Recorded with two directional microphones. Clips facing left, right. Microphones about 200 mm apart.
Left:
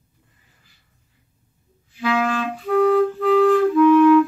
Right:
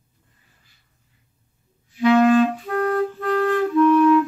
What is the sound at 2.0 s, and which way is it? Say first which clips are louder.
Clarinet: right 7 dB; 25° right (ahead or behind).